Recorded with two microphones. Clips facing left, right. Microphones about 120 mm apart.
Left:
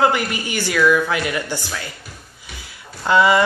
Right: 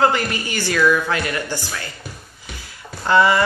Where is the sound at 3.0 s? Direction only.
15° left (ahead or behind).